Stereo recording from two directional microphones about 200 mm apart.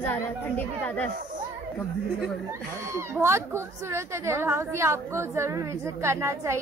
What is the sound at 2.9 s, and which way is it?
A woman's voice, 15° right (ahead or behind).